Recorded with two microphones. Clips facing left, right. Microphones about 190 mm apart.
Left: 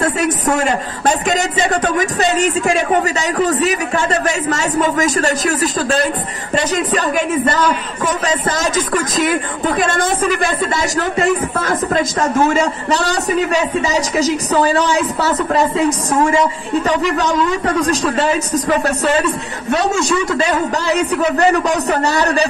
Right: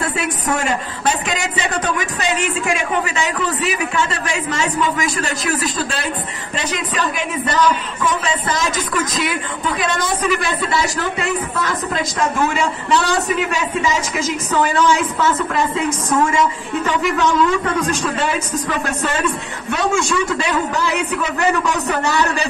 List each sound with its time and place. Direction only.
0.0 s a man's voice: 45° left (ahead or behind)